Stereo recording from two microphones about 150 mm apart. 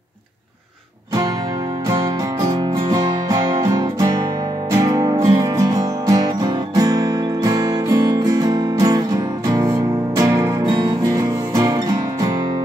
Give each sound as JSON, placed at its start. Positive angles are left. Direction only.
{"t": 2.5, "sound": "music", "side_deg": -25}